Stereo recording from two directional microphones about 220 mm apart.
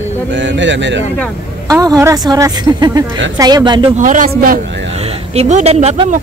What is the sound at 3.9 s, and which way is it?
Speech, 35° right (ahead or behind).